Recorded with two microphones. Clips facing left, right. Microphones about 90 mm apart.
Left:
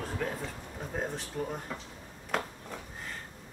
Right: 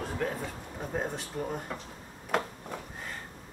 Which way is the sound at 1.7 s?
Centre (ahead or behind).